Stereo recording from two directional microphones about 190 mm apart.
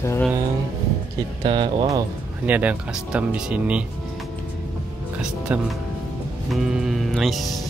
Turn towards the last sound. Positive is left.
turn(degrees=0)  # may be behind; listen again after turning